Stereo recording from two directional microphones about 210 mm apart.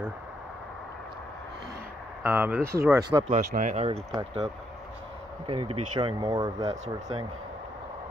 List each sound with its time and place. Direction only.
2.2 s speech: 10° right (ahead or behind)
3.3 s speech: 35° right (ahead or behind)
5.5 s speech: 25° right (ahead or behind)
6.6 s speech: 30° right (ahead or behind)